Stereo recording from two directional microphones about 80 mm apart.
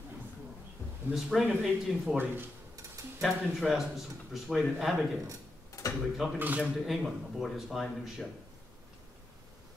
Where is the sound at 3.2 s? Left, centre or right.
Centre.